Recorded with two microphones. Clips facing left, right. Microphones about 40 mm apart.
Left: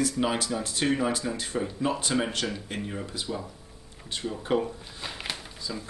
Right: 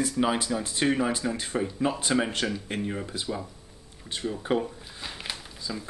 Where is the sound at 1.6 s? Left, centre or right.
Centre.